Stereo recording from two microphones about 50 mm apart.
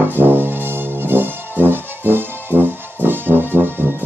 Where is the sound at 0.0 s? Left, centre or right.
Right.